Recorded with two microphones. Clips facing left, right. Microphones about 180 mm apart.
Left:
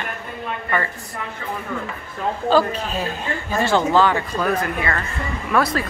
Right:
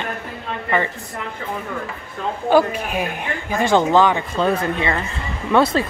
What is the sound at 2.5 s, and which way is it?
A woman's voice, 15° right (ahead or behind).